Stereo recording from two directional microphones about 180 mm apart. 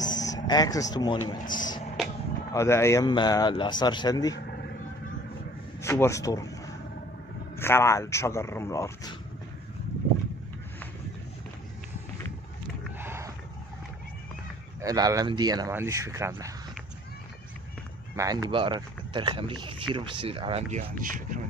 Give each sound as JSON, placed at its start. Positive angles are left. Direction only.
{"t": 0.2, "sound": "speech", "side_deg": 20}
{"t": 1.4, "sound": "speech", "side_deg": 45}
{"t": 2.0, "sound": "vehicle", "side_deg": 0}
{"t": 2.5, "sound": "a man's voice", "side_deg": 15}
{"t": 5.8, "sound": "speech", "side_deg": 15}
{"t": 13.0, "sound": "roaring cats", "side_deg": -15}
{"t": 14.8, "sound": "speech", "side_deg": -20}
{"t": 18.1, "sound": "speech", "side_deg": -20}
{"t": 20.7, "sound": "speech", "side_deg": -50}